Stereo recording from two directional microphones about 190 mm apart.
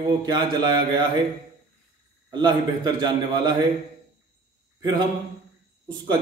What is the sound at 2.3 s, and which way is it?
A man's voice, 25° right (ahead or behind).